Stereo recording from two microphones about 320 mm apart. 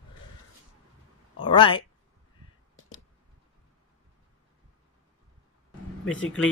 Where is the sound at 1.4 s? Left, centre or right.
Centre.